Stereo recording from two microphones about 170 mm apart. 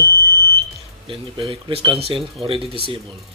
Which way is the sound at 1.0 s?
30° right (ahead or behind).